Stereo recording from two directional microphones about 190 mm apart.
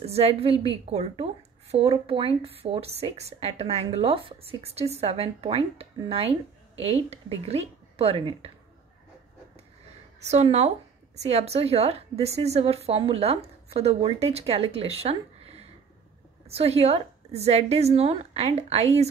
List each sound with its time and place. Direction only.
0.0 s a woman's voice: 30° right (ahead or behind)
10.2 s a woman's voice: 35° right (ahead or behind)